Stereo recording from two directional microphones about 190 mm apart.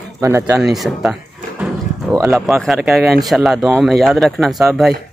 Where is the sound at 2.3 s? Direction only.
Centre (ahead or behind).